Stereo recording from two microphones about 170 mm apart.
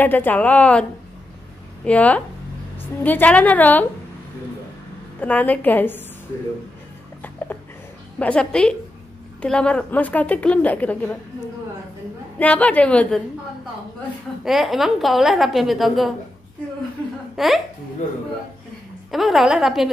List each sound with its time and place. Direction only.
0.0 s a woman's voice: 10° left (ahead or behind)
1.9 s a woman's voice: 10° left (ahead or behind)
5.2 s a woman's voice: 10° left (ahead or behind)
7.2 s dog: 10° left (ahead or behind)
8.2 s a woman's voice: 5° left (ahead or behind)
12.4 s a woman's voice: 10° left (ahead or behind)
14.4 s a woman's voice: centre (ahead or behind)
17.4 s a woman's voice: centre (ahead or behind)
19.0 s a woman's voice: centre (ahead or behind)